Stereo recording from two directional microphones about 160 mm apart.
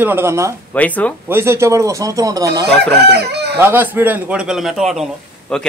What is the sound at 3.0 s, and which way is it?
Chicken, 90° right.